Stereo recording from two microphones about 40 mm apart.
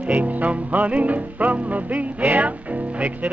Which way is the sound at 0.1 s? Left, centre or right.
Right.